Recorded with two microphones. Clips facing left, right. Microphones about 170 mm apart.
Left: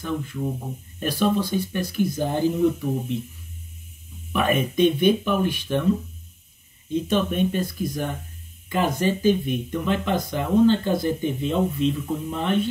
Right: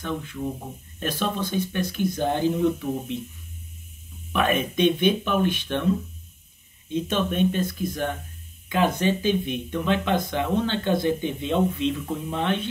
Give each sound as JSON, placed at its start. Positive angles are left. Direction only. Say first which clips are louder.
{"t": 0.0, "sound": "speech", "louder": "left 2 dB", "side_deg": 5}
{"t": 4.3, "sound": "speech", "louder": "left 1 dB", "side_deg": 5}
{"t": 7.1, "sound": "speech", "louder": "left 1 dB", "side_deg": 5}
{"t": 8.6, "sound": "speech", "louder": "even", "side_deg": 0}